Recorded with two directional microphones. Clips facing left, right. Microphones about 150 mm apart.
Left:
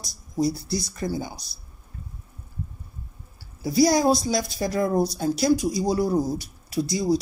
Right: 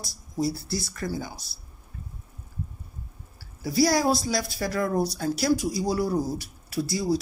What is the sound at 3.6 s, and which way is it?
Speech, 20° left (ahead or behind).